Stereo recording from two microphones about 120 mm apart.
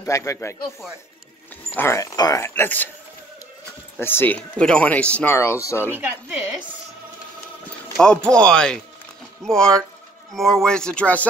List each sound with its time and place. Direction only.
0.0 s speech: 25° left (ahead or behind)
1.7 s speech: 20° left (ahead or behind)
4.0 s speech: 20° left (ahead or behind)
4.4 s speech: 5° left (ahead or behind)
8.0 s speech: 5° left (ahead or behind)